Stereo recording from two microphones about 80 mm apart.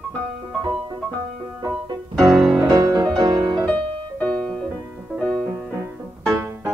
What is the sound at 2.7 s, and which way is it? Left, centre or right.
Music, right.